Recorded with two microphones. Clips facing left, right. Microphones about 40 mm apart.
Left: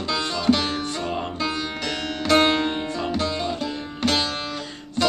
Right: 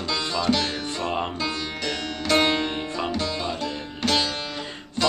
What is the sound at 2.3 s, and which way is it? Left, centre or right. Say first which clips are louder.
Music: left 3 dB; centre.